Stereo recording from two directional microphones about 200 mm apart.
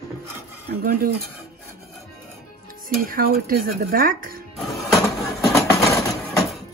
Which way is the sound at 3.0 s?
45° right (ahead or behind).